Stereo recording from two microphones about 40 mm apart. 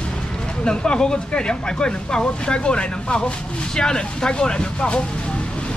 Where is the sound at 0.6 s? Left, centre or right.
Left.